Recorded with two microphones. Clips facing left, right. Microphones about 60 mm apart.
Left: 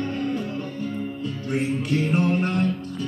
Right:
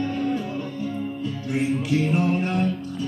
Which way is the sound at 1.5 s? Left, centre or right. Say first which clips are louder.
Right 1 dB; centre.